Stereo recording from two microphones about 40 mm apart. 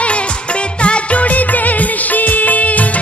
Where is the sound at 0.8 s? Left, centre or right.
Left.